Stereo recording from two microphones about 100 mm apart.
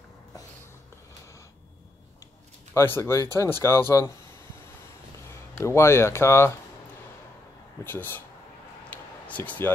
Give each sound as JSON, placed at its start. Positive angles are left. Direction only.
{"t": 2.7, "sound": "speech", "side_deg": 25}
{"t": 5.3, "sound": "speech", "side_deg": 30}
{"t": 7.8, "sound": "speech", "side_deg": 20}
{"t": 8.9, "sound": "a sound", "side_deg": 15}